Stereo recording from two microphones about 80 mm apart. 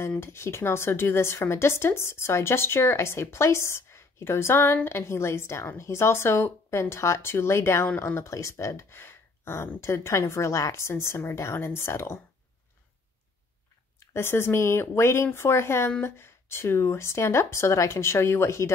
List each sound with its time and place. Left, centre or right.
0.2 s a woman's voice: left
13.9 s a woman's voice: left